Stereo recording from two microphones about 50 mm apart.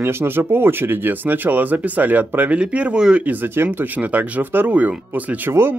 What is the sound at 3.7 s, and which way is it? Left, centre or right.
Speech, right.